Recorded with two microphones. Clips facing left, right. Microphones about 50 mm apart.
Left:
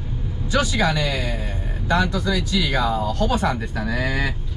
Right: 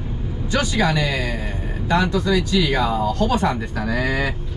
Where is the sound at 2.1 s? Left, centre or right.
Centre.